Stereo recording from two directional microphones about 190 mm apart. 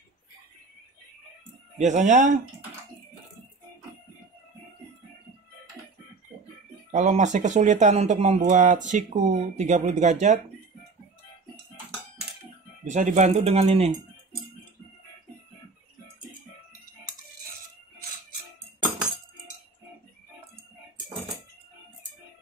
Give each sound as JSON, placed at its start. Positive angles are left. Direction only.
{"t": 1.8, "sound": "speech", "side_deg": -40}
{"t": 6.9, "sound": "speech", "side_deg": -40}
{"t": 12.9, "sound": "speech", "side_deg": -40}